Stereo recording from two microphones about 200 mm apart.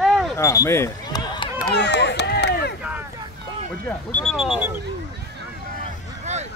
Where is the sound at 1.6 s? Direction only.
55° left (ahead or behind).